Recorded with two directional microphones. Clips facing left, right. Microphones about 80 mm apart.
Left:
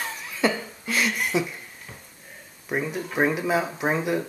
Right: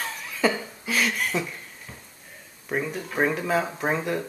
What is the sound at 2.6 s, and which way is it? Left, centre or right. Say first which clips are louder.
Speech: left 1 dB; centre.